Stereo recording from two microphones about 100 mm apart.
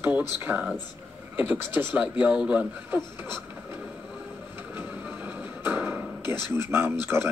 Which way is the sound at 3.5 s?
20° right (ahead or behind).